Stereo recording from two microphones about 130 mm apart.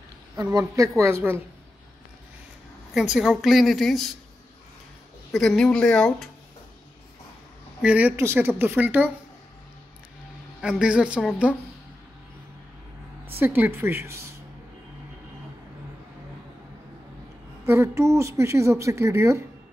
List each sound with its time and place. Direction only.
0.4 s a woman's voice: 25° right (ahead or behind)
2.9 s a woman's voice: 5° right (ahead or behind)
5.4 s a woman's voice: 5° left (ahead or behind)
7.8 s speech: 10° right (ahead or behind)
10.6 s speech: 5° right (ahead or behind)
13.4 s a woman's voice: 15° right (ahead or behind)
17.6 s a woman's voice: 20° right (ahead or behind)